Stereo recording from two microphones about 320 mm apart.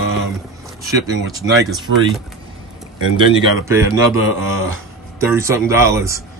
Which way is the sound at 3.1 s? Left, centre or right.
Centre.